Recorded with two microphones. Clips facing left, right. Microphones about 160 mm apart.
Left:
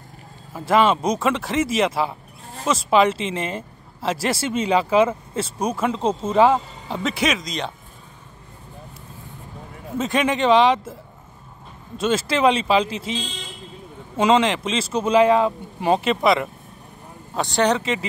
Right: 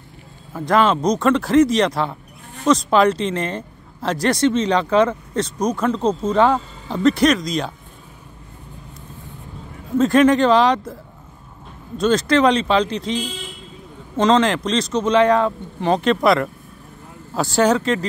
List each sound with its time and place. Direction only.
0.5 s speech: 5° left (ahead or behind)
9.9 s speech: centre (ahead or behind)
12.0 s speech: 5° left (ahead or behind)
14.1 s speech: 5° left (ahead or behind)